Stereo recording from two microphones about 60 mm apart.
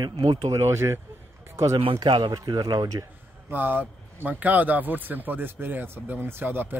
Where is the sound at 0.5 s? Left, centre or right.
Right.